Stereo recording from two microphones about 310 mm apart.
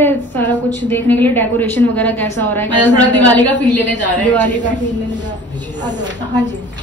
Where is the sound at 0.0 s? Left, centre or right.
Centre.